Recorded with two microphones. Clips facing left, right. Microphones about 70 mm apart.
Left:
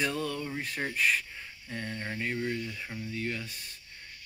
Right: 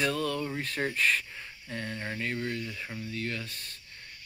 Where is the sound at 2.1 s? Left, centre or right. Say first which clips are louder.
Left 2 dB; centre.